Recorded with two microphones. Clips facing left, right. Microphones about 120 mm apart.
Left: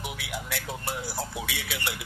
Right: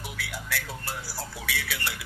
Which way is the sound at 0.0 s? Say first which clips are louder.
Left 2 dB; 20° left (ahead or behind).